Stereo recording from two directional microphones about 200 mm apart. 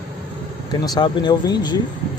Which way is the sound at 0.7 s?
20° left (ahead or behind).